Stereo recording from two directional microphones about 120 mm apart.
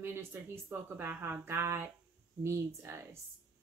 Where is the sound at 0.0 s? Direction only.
20° right (ahead or behind).